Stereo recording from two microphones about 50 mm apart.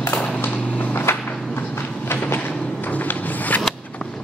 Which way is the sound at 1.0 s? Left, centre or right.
Left.